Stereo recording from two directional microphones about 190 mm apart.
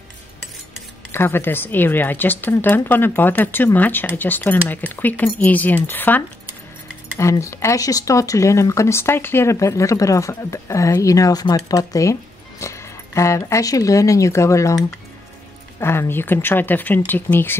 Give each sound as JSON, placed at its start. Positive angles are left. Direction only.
{"t": 1.1, "sound": "speech", "side_deg": 10}
{"t": 15.8, "sound": "speech", "side_deg": 15}